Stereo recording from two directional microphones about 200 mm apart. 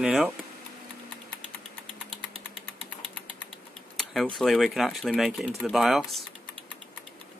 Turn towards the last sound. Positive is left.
turn(degrees=0)  # may be behind; listen again after turning